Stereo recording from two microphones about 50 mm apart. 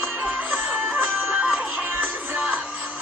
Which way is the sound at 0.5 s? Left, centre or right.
Right.